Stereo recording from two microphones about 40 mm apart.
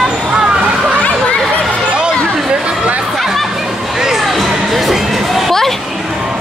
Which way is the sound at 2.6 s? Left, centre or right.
Right.